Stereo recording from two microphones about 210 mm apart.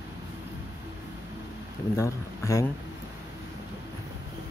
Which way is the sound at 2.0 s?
15° left (ahead or behind).